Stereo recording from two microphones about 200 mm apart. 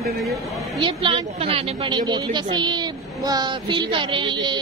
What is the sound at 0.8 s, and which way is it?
A woman's voice, 25° right (ahead or behind).